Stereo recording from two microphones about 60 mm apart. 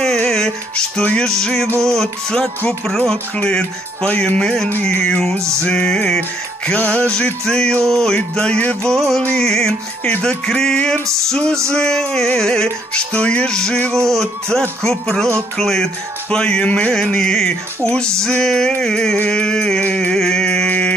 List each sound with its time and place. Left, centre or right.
0.0 s music: centre
3.3 s music: centre
5.4 s music: right
5.7 s music: centre
6.7 s music: left
8.9 s speech: centre
9.4 s music: centre
14.0 s speech: centre
14.8 s music: centre
16.9 s music: centre